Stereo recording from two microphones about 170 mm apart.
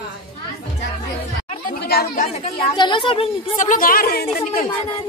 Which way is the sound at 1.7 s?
65° left (ahead or behind).